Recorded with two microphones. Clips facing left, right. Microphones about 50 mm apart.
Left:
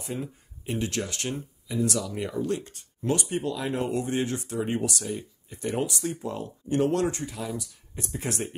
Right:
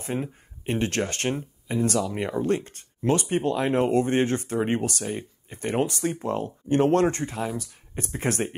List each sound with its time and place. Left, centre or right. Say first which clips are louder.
0.0 s speech: right 4 dB; right